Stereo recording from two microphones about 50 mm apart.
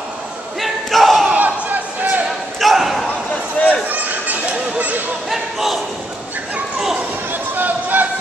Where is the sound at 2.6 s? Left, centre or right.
Centre.